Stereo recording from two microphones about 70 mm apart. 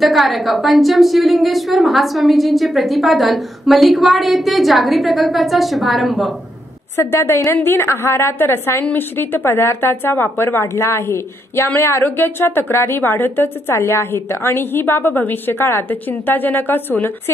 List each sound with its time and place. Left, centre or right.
0.0 s a woman's voice: centre
7.0 s speech: left